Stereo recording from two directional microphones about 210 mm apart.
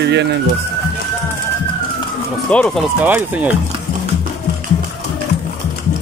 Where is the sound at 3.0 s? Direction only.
5° right (ahead or behind).